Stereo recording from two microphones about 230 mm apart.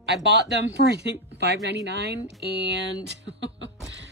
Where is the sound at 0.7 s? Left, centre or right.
Right.